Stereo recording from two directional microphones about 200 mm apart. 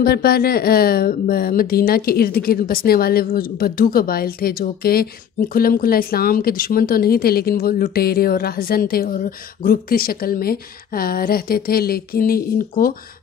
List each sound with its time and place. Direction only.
0.0 s a woman's voice: 50° left (ahead or behind)